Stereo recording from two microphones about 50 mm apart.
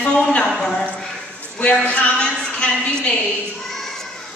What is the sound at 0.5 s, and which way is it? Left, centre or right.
Speech, centre.